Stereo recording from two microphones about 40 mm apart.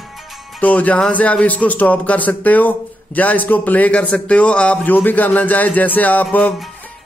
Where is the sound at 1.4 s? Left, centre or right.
Left.